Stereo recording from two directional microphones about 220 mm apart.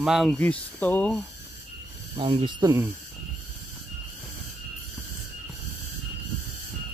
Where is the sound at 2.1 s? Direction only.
25° right (ahead or behind).